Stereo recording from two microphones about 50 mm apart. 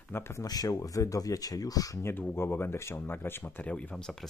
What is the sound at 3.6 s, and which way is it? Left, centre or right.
Speech, left.